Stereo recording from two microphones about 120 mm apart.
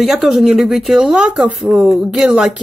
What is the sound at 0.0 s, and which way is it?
Speech, 5° right (ahead or behind).